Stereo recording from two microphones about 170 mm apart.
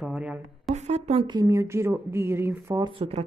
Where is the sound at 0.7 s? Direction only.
40° right (ahead or behind); by 2.9 s 20° right (ahead or behind).